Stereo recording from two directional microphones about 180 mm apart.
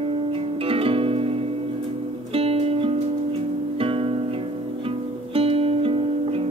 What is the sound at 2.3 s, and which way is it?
Music, 35° right (ahead or behind).